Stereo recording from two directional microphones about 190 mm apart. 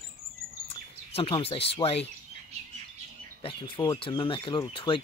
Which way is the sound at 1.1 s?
30° left (ahead or behind).